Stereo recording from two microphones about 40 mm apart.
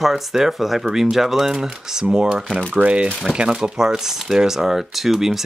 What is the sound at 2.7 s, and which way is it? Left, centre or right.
Speech, right.